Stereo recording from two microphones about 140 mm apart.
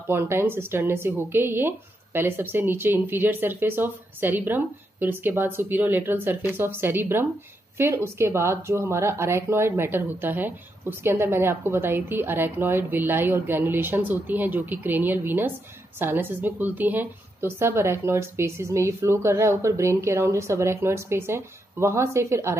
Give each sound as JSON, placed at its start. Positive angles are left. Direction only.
{"t": 0.0, "sound": "a woman's voice", "side_deg": -15}